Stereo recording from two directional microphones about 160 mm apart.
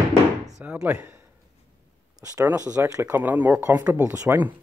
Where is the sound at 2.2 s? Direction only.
20° right (ahead or behind).